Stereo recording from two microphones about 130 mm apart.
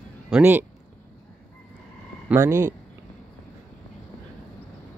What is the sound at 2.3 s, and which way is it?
Speech, 20° right (ahead or behind).